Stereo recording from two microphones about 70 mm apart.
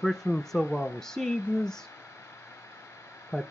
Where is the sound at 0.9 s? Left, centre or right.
Centre.